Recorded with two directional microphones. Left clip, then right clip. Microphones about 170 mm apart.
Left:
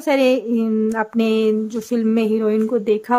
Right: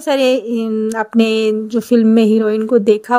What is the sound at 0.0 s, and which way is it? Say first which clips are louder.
A woman's voice: right 3 dB; 30° right (ahead or behind).